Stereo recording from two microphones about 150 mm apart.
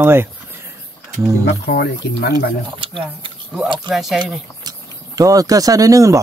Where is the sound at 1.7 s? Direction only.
90° left.